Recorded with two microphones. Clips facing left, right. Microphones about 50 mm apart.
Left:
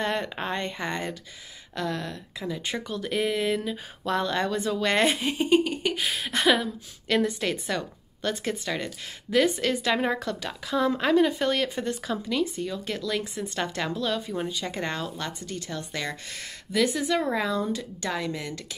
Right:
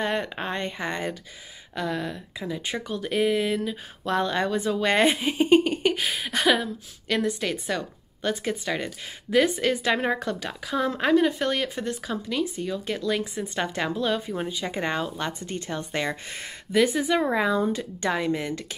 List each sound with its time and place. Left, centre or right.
0.0 s speech: centre
5.4 s speech: right
6.1 s a woman's voice: centre; by 18.6 s right